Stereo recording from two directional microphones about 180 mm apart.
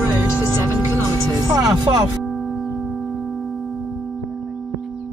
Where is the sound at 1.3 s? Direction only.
20° right (ahead or behind).